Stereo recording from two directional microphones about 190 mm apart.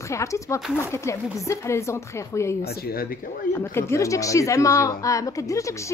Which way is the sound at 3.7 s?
15° left (ahead or behind).